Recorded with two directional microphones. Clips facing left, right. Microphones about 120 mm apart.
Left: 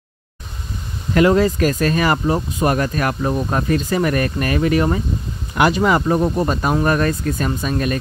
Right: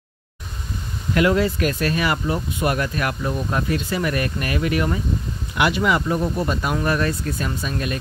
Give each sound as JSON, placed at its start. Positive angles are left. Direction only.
{"t": 1.1, "sound": "speech", "side_deg": 40}